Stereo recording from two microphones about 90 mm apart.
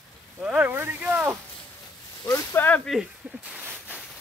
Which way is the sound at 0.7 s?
25° right (ahead or behind).